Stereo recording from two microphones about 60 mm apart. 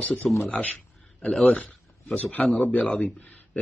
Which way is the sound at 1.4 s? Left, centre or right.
Left.